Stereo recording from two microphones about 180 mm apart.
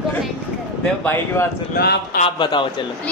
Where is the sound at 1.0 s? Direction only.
15° left (ahead or behind).